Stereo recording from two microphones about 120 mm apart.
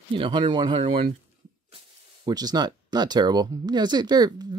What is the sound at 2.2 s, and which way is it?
Speech, 35° right (ahead or behind).